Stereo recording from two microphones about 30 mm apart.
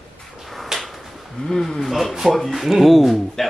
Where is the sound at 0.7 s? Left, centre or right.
Centre.